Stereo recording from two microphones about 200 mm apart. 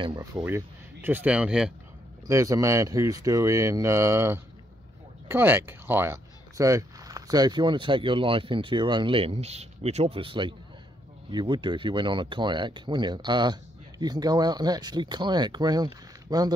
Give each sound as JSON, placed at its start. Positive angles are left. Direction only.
{"t": 0.0, "sound": "speech", "side_deg": -20}
{"t": 2.2, "sound": "speech", "side_deg": -15}